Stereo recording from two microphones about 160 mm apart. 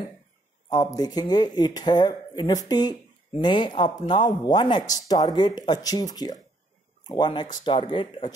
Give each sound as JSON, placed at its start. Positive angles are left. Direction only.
{"t": 0.7, "sound": "speech", "side_deg": 25}